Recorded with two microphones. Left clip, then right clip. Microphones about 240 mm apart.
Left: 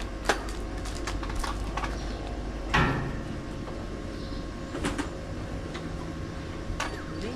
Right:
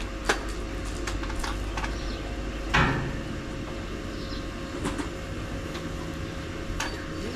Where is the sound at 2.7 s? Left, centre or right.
Centre.